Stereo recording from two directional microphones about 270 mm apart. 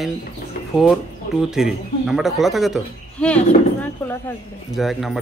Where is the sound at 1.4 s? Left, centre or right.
Centre.